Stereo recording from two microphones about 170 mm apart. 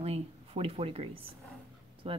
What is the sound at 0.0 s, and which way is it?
A woman's voice, 35° right (ahead or behind).